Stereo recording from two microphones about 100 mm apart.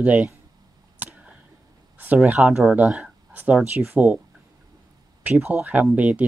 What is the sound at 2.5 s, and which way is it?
Speech, 5° right (ahead or behind).